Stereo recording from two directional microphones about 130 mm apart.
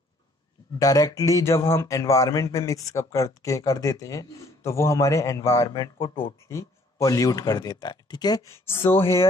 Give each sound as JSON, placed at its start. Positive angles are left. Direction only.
{"t": 0.7, "sound": "speech", "side_deg": 25}